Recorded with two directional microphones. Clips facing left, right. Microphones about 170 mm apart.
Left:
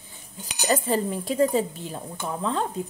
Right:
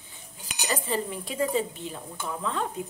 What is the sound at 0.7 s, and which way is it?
Dishes, 40° left (ahead or behind).